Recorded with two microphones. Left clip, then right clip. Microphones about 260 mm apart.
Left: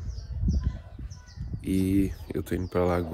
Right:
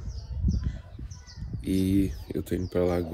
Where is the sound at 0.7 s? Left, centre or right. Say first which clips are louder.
Even; right.